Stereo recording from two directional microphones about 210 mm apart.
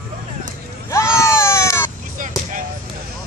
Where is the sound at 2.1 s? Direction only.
40° right (ahead or behind).